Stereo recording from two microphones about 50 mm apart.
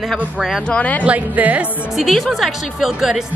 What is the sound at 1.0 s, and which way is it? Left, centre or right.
Speech, right.